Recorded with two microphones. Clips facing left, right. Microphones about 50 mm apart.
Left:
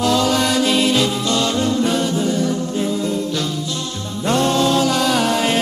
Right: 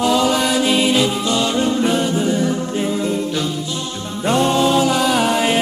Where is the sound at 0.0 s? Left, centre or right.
Centre.